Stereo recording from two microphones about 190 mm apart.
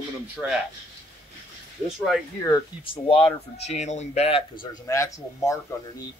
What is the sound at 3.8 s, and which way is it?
Speech, 35° left (ahead or behind).